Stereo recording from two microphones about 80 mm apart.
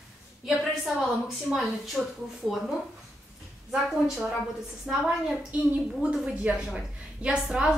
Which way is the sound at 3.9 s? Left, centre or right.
Centre.